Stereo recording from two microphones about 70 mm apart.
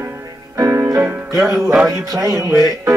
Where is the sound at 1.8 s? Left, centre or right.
Right.